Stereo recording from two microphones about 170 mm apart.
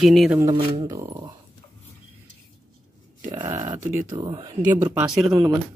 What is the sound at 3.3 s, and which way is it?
Speech, 30° right (ahead or behind).